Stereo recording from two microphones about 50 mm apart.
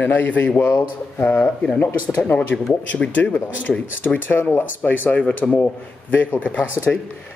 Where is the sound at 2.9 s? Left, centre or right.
Left.